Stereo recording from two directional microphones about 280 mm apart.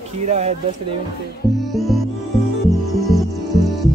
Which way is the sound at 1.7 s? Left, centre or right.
Centre.